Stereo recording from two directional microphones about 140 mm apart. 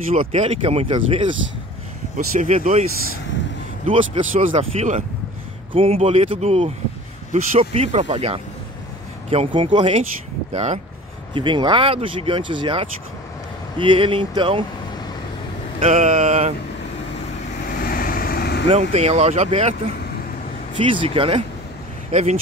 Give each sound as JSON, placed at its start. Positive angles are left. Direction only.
{"t": 0.3, "sound": "speech", "side_deg": -50}
{"t": 2.1, "sound": "speech", "side_deg": -65}
{"t": 3.8, "sound": "speech", "side_deg": -65}
{"t": 10.5, "sound": "speech", "side_deg": -55}
{"t": 11.3, "sound": "speech", "side_deg": -35}
{"t": 15.8, "sound": "speech", "side_deg": -55}
{"t": 17.7, "sound": "vehicle", "side_deg": 90}
{"t": 18.7, "sound": "speech", "side_deg": -50}
{"t": 20.7, "sound": "speech", "side_deg": -40}
{"t": 22.1, "sound": "speech", "side_deg": -50}